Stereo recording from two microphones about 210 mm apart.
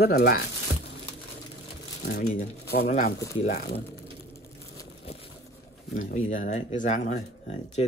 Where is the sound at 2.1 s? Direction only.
50° left (ahead or behind).